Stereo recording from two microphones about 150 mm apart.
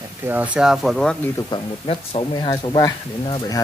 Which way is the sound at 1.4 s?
30° left (ahead or behind).